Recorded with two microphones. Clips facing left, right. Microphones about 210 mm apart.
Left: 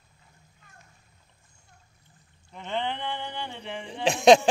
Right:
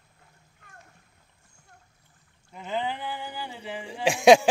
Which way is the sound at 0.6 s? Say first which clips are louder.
Right 4 dB; 60° right (ahead or behind).